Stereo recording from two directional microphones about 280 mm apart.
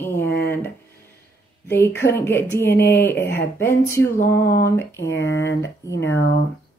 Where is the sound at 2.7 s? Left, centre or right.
Left.